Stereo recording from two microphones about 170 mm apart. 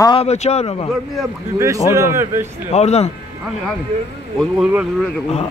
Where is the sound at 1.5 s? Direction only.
20° right (ahead or behind).